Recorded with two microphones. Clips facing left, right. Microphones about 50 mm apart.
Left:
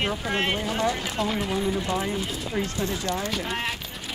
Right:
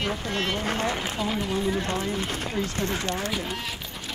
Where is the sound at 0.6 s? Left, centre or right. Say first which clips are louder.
Left 1 dB; right.